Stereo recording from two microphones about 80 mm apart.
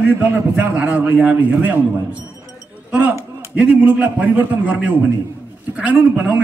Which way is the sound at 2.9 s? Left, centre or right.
Centre.